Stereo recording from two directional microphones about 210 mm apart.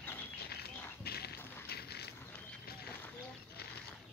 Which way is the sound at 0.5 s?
50° left (ahead or behind).